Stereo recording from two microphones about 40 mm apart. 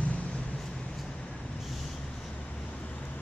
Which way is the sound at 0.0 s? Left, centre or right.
Left.